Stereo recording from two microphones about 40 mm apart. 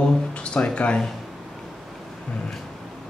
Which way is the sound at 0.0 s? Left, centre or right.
Left.